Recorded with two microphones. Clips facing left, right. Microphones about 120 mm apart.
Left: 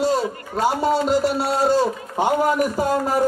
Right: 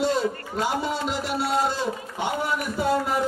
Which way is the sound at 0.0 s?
40° left (ahead or behind).